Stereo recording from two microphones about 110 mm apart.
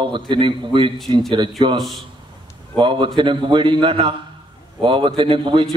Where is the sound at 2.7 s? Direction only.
50° right (ahead or behind).